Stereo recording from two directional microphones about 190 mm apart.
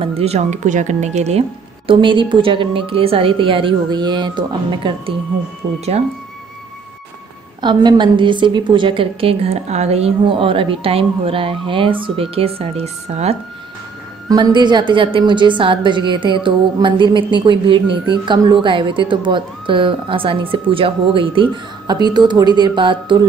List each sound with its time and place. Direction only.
0.0 s speech: 35° right (ahead or behind)
1.9 s a woman's voice: 25° right (ahead or behind)
7.6 s a woman's voice: 25° right (ahead or behind)
14.3 s a woman's voice: 25° right (ahead or behind)